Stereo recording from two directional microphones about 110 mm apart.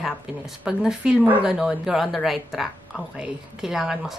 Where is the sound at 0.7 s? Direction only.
5° right (ahead or behind).